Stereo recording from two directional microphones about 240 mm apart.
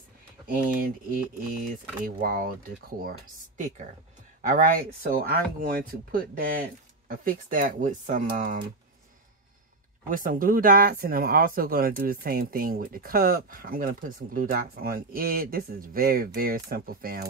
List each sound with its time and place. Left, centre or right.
1.1 s speech: right
10.0 s speech: right